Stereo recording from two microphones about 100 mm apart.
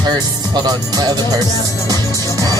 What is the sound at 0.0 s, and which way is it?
Speech, 45° right (ahead or behind).